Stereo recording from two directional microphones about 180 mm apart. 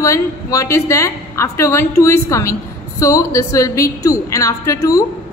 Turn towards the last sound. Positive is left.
turn(degrees=20)  # may be behind; listen again after turning